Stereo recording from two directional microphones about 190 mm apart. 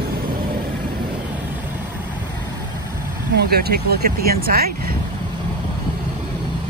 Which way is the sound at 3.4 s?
55° right (ahead or behind).